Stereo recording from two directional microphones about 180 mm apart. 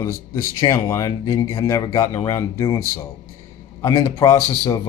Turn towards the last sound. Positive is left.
turn(degrees=20)  # may be behind; listen again after turning